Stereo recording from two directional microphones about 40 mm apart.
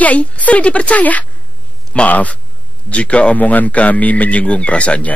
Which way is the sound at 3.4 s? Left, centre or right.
Left.